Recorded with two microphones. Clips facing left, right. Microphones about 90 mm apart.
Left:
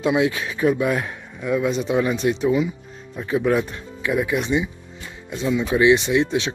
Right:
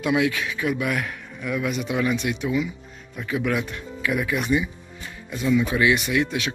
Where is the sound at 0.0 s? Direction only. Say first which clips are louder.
Left 2 dB; 25° left (ahead or behind).